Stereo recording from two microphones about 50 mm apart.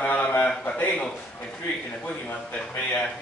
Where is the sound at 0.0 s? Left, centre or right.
Left.